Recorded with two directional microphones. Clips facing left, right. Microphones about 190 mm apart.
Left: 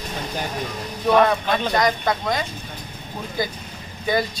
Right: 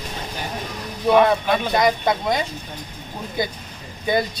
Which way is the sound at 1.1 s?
10° right (ahead or behind).